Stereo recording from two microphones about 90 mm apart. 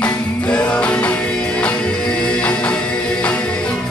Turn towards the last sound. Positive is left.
turn(degrees=15)  # may be behind; listen again after turning